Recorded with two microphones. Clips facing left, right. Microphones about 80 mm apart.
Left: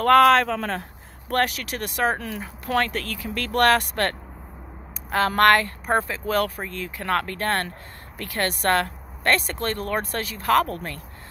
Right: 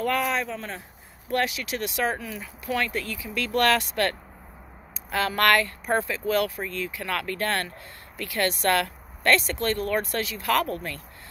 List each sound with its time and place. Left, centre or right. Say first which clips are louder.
0.0 s speech: left 10 dB; left
1.3 s speech: left 2 dB; left